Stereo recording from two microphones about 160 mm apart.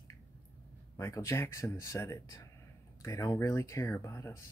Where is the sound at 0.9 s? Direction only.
20° left (ahead or behind).